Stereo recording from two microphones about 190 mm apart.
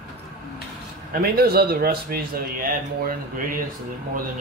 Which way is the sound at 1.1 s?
50° right (ahead or behind).